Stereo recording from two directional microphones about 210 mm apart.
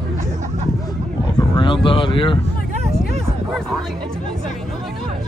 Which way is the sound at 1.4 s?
20° left (ahead or behind).